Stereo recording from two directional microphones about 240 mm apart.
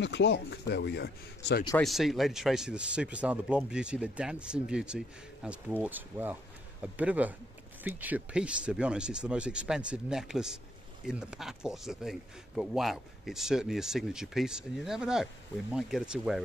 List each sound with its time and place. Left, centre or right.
0.0 s speech: left
1.8 s speech: centre